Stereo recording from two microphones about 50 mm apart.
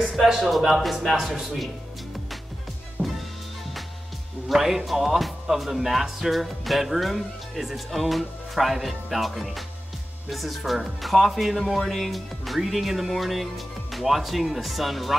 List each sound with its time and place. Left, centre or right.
0.1 s speech: centre
3.0 s music: right
4.5 s speech: centre